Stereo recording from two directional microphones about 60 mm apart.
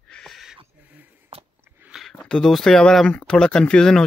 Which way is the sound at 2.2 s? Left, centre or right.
Centre.